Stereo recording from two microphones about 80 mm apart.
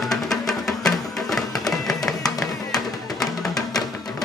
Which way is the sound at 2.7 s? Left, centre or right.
Left.